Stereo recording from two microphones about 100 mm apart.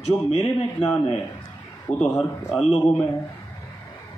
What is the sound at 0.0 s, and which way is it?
Speech, 90° left.